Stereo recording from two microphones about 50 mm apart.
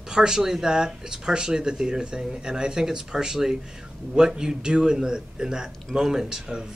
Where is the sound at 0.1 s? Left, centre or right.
Centre.